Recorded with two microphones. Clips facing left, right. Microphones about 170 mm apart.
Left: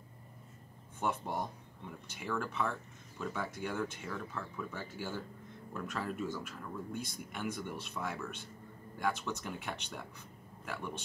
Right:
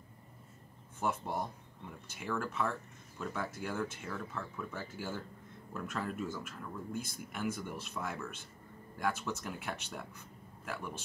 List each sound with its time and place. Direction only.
1.0 s speech: centre (ahead or behind)